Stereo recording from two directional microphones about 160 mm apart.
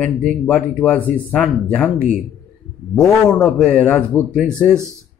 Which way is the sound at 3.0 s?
Centre (ahead or behind).